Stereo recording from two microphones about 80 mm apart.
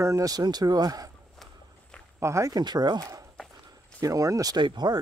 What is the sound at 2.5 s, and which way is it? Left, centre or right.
Speech, right.